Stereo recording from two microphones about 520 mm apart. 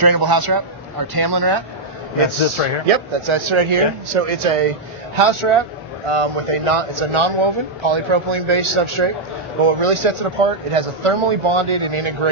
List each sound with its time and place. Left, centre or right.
0.0 s a man's voice: right
2.9 s a man's voice: right